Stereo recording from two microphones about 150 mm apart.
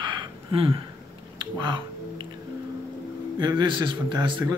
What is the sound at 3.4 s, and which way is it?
A man's voice, 30° right (ahead or behind).